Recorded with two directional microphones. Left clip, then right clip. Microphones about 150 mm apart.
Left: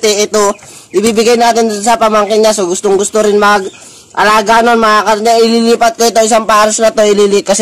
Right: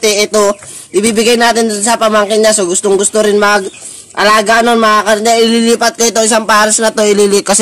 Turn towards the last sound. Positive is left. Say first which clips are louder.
# left 1 dB
turn(degrees=-15)  # may be behind; listen again after turning